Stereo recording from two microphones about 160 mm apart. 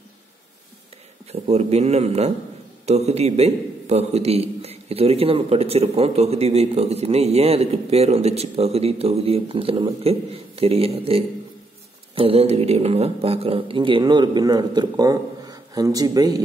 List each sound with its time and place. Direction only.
1.2 s a man's voice: 40° right (ahead or behind); by 16.4 s 25° right (ahead or behind)